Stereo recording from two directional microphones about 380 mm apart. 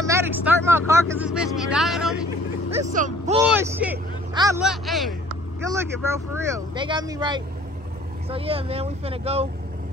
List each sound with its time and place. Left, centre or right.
0.0 s speech: centre
2.9 s speech: centre
3.4 s speech: centre